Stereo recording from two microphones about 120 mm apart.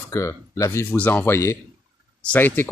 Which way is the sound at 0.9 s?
15° left (ahead or behind).